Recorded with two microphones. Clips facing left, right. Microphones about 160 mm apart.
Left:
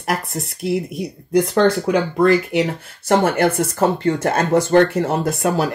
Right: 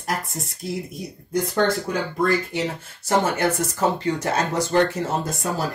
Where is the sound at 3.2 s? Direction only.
60° left (ahead or behind).